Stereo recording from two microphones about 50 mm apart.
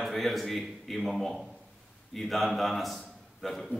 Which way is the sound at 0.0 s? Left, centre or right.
Centre.